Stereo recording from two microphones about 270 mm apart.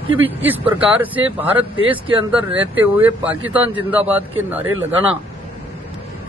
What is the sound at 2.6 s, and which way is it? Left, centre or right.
Speech, centre.